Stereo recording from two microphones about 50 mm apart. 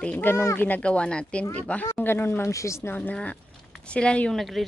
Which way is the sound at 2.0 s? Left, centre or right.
Left.